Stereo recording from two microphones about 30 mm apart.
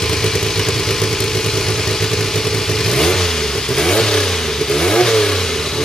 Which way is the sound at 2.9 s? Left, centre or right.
Centre.